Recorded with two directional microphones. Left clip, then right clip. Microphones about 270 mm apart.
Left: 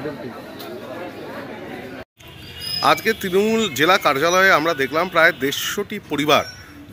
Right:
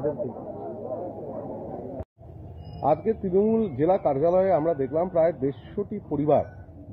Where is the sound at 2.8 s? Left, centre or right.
Left.